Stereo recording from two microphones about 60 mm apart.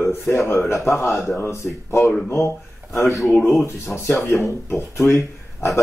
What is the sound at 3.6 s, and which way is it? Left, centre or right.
Speech, left.